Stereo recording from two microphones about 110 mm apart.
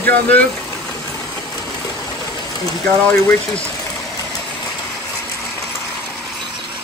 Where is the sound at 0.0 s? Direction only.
15° left (ahead or behind).